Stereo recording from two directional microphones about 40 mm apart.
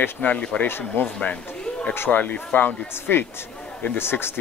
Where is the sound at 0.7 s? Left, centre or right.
Left.